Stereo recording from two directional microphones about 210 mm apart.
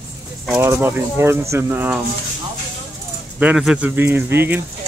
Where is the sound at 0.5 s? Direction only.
10° right (ahead or behind).